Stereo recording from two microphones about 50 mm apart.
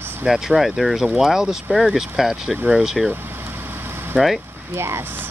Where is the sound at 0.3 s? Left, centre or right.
Centre.